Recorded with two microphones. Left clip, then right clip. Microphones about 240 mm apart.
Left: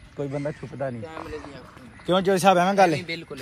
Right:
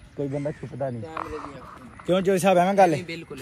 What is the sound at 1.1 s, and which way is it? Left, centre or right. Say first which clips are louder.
Speech: right 3 dB; left.